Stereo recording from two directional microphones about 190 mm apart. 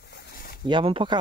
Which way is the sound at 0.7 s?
25° right (ahead or behind).